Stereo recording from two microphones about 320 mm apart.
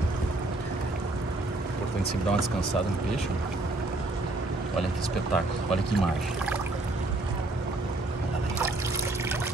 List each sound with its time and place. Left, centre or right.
5.3 s speech: centre